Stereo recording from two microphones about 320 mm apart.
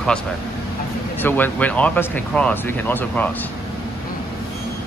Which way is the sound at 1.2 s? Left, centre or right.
Centre.